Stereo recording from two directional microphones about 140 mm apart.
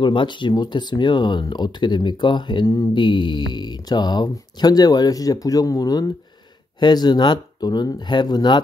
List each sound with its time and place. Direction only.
0.0 s speech: 35° left (ahead or behind)